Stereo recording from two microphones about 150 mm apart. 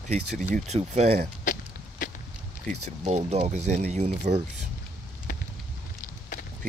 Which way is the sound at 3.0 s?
45° right (ahead or behind).